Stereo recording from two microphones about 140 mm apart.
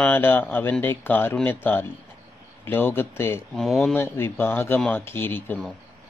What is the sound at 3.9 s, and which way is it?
Speech, 15° left (ahead or behind).